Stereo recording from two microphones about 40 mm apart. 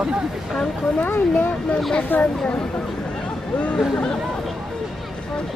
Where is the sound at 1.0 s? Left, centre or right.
Left.